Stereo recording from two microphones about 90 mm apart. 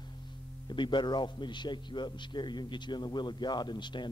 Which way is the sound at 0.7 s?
60° left (ahead or behind).